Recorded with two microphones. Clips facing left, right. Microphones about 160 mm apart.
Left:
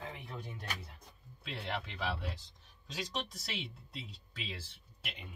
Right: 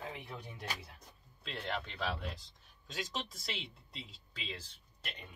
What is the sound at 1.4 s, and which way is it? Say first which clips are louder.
Speech: even; 5° left (ahead or behind).